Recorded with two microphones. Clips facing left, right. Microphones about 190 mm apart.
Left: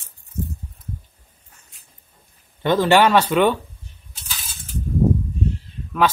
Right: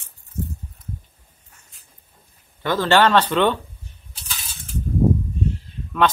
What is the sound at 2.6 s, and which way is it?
Speech, 15° left (ahead or behind).